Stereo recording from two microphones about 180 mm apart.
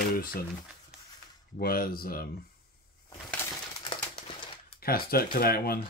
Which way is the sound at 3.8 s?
25° left (ahead or behind).